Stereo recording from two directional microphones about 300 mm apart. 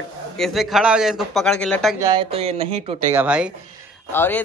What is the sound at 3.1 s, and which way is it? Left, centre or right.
Speech, centre.